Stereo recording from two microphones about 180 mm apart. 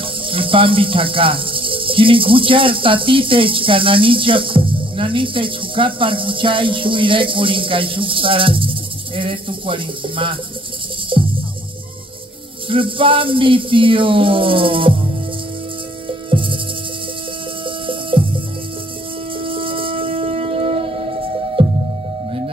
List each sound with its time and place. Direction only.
0.0 s speech: 30° right (ahead or behind)
11.1 s music: 30° right (ahead or behind)
12.6 s speech: 30° right (ahead or behind)
16.1 s music: 30° right (ahead or behind)
17.6 s music: 30° right (ahead or behind)
19.4 s music: 30° right (ahead or behind)